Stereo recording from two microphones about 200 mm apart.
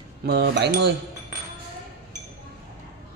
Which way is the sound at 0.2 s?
55° right (ahead or behind).